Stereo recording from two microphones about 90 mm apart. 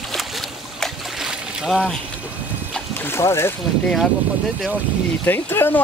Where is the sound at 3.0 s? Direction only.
30° left (ahead or behind).